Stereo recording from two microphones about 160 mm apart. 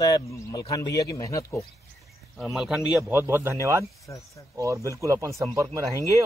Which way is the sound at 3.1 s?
15° right (ahead or behind).